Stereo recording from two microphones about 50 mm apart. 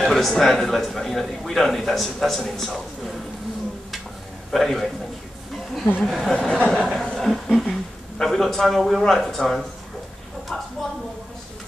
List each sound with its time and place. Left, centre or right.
0.0 s a man's voice: centre
4.5 s a man's voice: centre
6.0 s a man's voice: centre
6.5 s a sound: centre
6.9 s a woman's voice: centre